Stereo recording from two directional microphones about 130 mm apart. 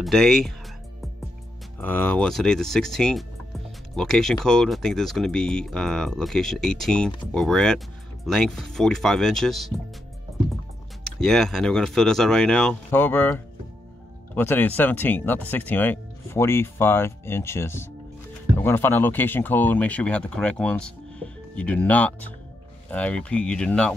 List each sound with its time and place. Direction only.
0.0 s speech: centre (ahead or behind)
1.8 s speech: 15° left (ahead or behind)
11.1 s speech: 5° left (ahead or behind)
12.9 s speech: 15° left (ahead or behind)